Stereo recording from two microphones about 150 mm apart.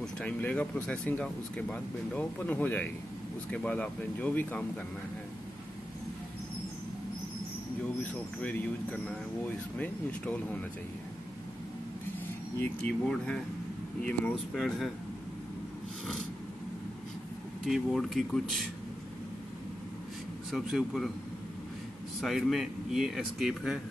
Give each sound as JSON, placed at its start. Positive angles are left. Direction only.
{"t": 0.0, "sound": "speech", "side_deg": 10}
{"t": 8.0, "sound": "speech", "side_deg": 10}
{"t": 12.5, "sound": "speech", "side_deg": 10}
{"t": 17.6, "sound": "speech", "side_deg": 0}
{"t": 20.5, "sound": "speech", "side_deg": 0}
{"t": 22.2, "sound": "speech", "side_deg": 0}